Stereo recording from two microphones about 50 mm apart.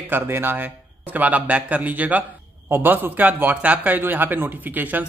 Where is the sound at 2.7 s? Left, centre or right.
Right.